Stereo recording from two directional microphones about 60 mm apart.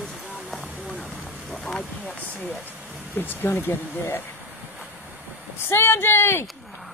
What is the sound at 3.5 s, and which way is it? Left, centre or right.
Speech, left.